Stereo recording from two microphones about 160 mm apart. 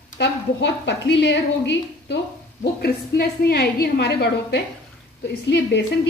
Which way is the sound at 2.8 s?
75° left (ahead or behind).